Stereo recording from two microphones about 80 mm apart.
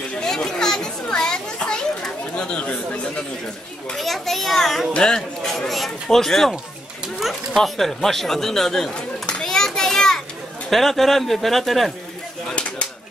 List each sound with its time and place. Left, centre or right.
0.1 s children playing: centre
3.9 s speech: centre
9.3 s children playing: centre
10.7 s speech: centre
12.4 s a sound: centre